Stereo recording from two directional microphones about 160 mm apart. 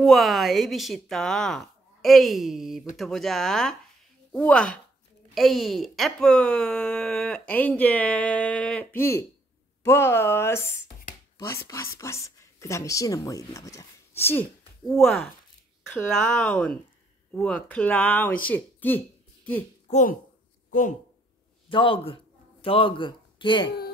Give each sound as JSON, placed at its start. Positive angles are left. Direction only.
{"t": 0.0, "sound": "a woman's voice", "side_deg": 0}
{"t": 14.9, "sound": "speech", "side_deg": 5}
{"t": 19.9, "sound": "a child's voice", "side_deg": 50}
{"t": 21.6, "sound": "speech", "side_deg": 35}